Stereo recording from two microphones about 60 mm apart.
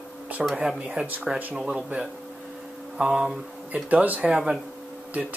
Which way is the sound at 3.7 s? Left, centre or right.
Right.